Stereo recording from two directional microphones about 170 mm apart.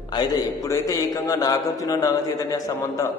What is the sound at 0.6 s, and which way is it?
A man's voice, 20° left (ahead or behind).